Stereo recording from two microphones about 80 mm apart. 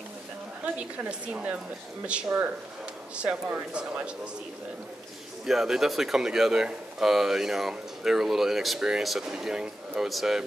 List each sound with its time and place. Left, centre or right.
1.3 s speech: centre
5.4 s speech: centre